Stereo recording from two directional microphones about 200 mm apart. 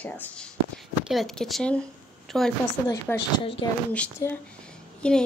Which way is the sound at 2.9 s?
20° left (ahead or behind).